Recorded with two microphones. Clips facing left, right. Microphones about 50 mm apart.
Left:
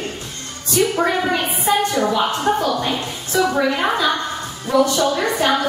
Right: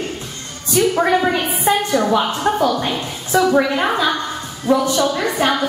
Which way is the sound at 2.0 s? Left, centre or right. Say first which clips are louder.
Right 1 dB; centre.